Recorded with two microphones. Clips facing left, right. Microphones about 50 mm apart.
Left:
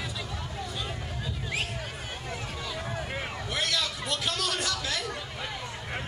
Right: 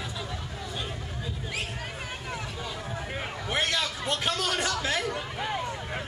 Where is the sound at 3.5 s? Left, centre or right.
Right.